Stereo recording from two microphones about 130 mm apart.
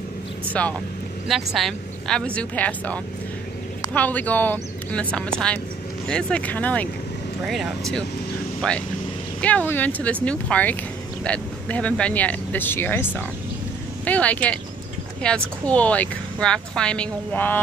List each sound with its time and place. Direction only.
0.5 s speech: 10° left (ahead or behind)
1.2 s a woman's voice: centre (ahead or behind)
7.4 s a woman's voice: centre (ahead or behind)